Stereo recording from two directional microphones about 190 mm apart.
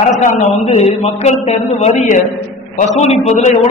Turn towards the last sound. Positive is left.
turn(degrees=35)  # may be behind; listen again after turning